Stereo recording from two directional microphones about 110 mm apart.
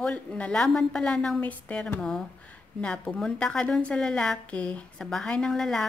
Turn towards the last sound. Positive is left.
turn(degrees=5)  # may be behind; listen again after turning